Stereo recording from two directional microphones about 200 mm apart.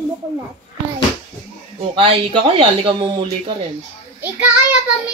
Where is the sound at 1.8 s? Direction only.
30° right (ahead or behind).